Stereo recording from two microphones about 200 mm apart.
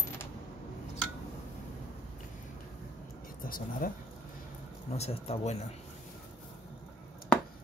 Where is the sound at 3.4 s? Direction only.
45° left (ahead or behind).